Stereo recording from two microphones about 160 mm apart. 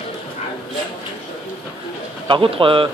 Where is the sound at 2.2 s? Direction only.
35° right (ahead or behind).